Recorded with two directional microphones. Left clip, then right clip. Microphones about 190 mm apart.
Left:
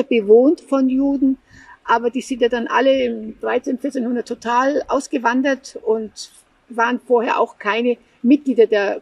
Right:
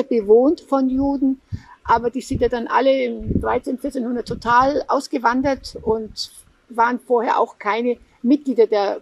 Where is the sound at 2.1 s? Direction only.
45° right (ahead or behind).